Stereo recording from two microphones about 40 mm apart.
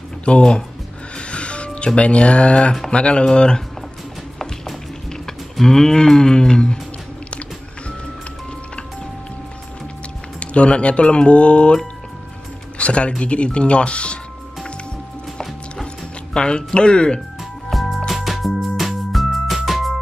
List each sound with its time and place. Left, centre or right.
0.3 s speech: left
1.1 s music: left
2.0 s speech: left
5.1 s a sound: centre
10.4 s speech: left
16.3 s speech: left
17.6 s music: centre